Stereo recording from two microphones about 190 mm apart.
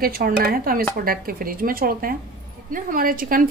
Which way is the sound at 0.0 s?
50° right (ahead or behind).